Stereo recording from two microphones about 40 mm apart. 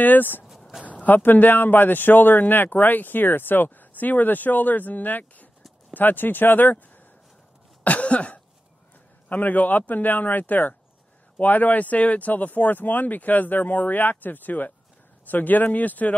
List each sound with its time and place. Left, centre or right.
0.0 s speech: left
0.8 s a sound: left
1.1 s speech: left
7.8 s cough: left
9.3 s speech: left